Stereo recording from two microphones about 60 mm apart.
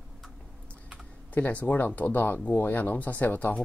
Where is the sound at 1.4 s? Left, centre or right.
Left.